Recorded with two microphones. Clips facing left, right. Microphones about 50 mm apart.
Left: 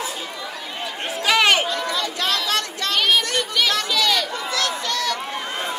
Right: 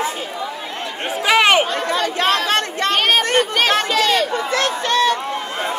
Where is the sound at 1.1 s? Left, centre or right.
Centre.